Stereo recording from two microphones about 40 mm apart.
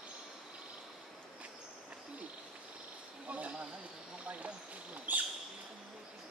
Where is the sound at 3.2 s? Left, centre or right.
Right.